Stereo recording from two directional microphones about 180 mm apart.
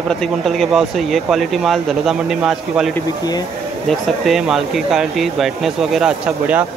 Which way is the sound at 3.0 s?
20° left (ahead or behind).